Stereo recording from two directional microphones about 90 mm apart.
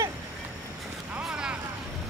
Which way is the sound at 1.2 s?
10° right (ahead or behind).